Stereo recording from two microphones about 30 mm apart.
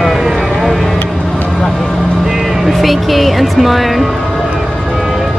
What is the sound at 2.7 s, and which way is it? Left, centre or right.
Music, centre.